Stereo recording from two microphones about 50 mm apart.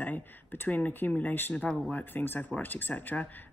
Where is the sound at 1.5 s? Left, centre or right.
Left.